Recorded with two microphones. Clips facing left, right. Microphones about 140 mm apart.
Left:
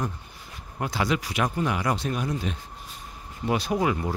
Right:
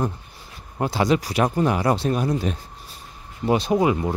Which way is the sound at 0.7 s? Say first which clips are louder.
Right 6 dB; 30° right (ahead or behind).